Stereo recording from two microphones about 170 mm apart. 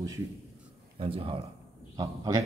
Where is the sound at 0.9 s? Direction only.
30° right (ahead or behind).